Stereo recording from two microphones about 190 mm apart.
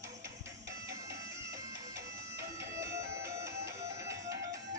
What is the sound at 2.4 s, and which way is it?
Music, 15° right (ahead or behind).